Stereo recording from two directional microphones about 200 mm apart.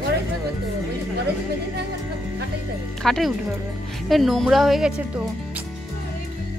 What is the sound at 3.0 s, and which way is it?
Speech, centre (ahead or behind).